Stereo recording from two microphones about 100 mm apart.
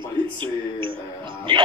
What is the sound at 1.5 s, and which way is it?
Music, 55° right (ahead or behind).